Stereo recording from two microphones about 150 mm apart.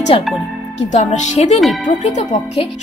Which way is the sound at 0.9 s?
50° left (ahead or behind).